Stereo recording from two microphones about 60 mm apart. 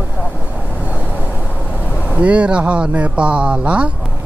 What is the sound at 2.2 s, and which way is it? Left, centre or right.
Speech, right.